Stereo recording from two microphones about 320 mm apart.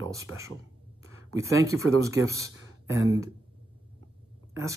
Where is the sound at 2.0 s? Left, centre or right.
Centre.